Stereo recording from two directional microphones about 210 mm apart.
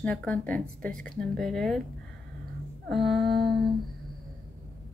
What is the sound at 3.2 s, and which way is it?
Humming, 50° right (ahead or behind).